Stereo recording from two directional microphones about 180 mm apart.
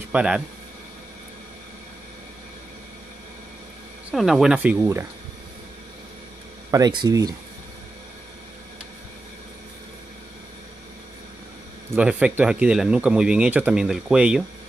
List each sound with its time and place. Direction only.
0.1 s speech: 5° right (ahead or behind)
4.1 s speech: centre (ahead or behind)
6.7 s speech: 25° right (ahead or behind)
11.9 s speech: 5° right (ahead or behind)